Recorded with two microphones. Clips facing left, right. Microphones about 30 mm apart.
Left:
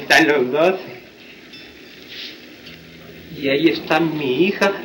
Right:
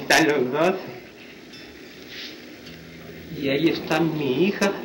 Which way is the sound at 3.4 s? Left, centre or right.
Left.